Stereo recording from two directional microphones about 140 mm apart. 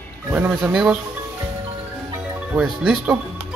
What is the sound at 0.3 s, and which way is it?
Speech, 10° right (ahead or behind).